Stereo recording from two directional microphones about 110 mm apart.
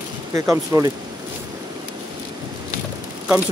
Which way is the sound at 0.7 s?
35° right (ahead or behind).